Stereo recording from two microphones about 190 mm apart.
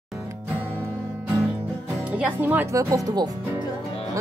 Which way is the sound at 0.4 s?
10° right (ahead or behind).